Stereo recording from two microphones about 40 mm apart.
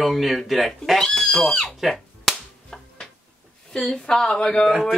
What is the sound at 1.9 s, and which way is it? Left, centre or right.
Music, centre.